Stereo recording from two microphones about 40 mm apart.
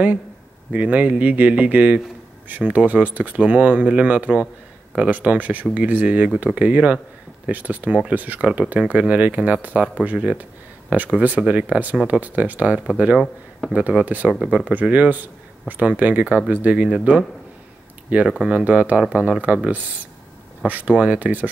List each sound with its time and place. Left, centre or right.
0.7 s speech: right
13.2 s speech: centre
13.7 s speech: right
18.1 s speech: right